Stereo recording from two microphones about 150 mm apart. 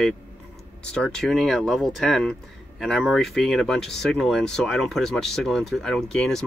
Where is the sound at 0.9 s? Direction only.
5° left (ahead or behind).